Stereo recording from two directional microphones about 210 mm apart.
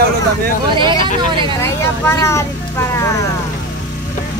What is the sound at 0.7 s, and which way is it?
Speech, 25° right (ahead or behind).